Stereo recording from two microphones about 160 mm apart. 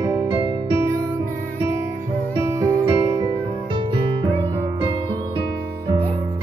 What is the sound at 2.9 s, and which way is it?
Music, 30° right (ahead or behind).